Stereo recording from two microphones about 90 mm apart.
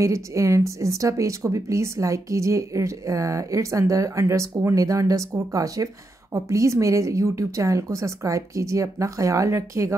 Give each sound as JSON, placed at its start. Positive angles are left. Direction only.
{"t": 0.0, "sound": "a woman's voice", "side_deg": -35}